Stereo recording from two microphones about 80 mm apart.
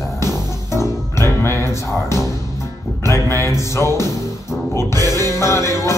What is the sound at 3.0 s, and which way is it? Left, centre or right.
Music, left.